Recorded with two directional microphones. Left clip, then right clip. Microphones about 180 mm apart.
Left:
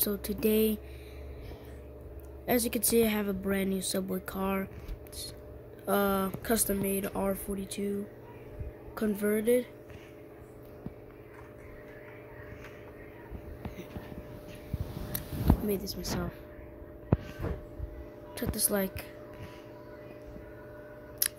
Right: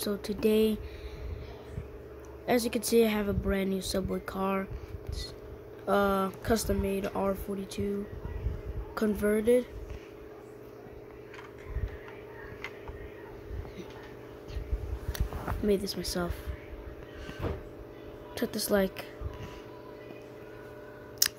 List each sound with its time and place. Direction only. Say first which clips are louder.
0.0 s speech: right 1 dB; centre (ahead or behind)
2.4 s speech: right 1 dB; centre (ahead or behind)
5.9 s speech: right 2 dB; centre (ahead or behind)
8.9 s speech: right 2 dB; 10° right (ahead or behind)
15.1 s a sound: left 4 dB; 20° right (ahead or behind)
18.3 s a woman's voice: right 4 dB; 30° right (ahead or behind)
21.2 s scissors: right 7 dB; 35° right (ahead or behind)